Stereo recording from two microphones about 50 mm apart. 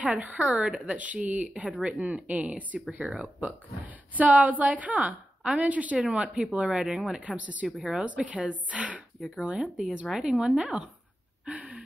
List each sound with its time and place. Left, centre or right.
0.0 s a woman's voice: right
5.4 s speech: centre
5.7 s speech: right
5.9 s speech: centre
10.0 s speech: centre
10.3 s speech: centre
11.4 s a sound: right